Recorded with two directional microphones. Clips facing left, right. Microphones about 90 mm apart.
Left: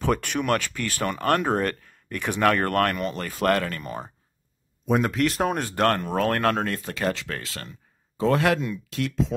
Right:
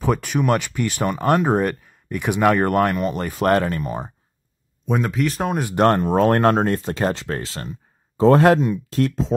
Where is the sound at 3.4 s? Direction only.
25° right (ahead or behind).